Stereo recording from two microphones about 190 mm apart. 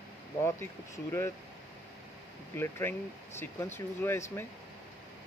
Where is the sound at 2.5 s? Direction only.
10° left (ahead or behind).